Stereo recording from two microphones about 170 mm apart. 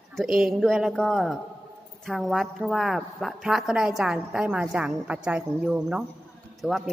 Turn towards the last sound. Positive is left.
turn(degrees=0)  # may be behind; listen again after turning